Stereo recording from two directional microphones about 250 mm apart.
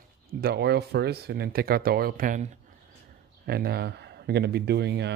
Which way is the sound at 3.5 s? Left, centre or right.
Right.